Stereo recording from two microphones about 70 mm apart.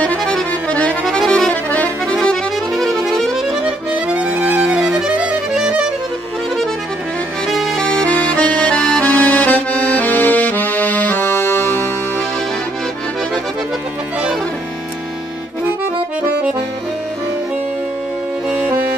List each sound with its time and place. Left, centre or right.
0.2 s accordion: centre
0.5 s accordion: centre
2.1 s accordion: centre
3.6 s accordion: centre
7.4 s accordion: centre
8.1 s accordion: centre
18.5 s music: centre